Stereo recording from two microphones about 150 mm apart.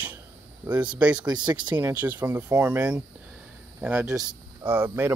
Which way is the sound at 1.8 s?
10° right (ahead or behind).